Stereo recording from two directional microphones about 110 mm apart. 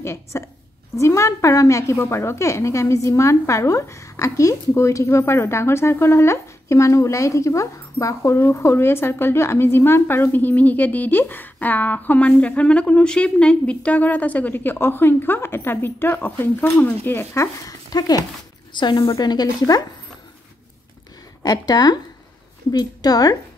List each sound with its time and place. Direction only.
0.0 s a woman's voice: 25° left (ahead or behind)
16.6 s speech: 5° left (ahead or behind)
17.0 s a woman's voice: 20° left (ahead or behind)
17.9 s a woman's voice: 35° left (ahead or behind)
21.4 s a woman's voice: 35° left (ahead or behind)